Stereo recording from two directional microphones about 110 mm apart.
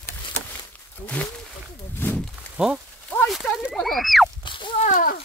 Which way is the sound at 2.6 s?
10° right (ahead or behind).